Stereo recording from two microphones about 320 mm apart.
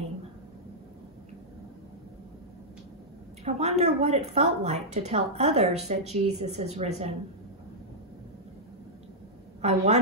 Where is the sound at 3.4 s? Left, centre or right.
Centre.